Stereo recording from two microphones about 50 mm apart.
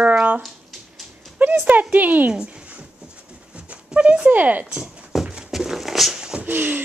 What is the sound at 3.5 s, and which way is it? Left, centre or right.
Dog, right.